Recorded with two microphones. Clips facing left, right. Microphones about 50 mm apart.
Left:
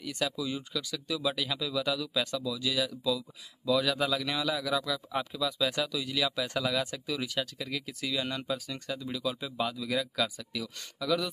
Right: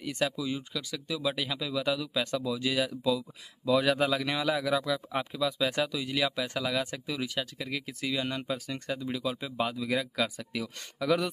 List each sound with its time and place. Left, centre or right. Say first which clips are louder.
0.0 s speech: right 3 dB; right
0.5 s a man's voice: even; centre
8.5 s a man's voice: right 2 dB; right
9.1 s speech: even; centre
9.4 s a man's voice: right 1 dB; right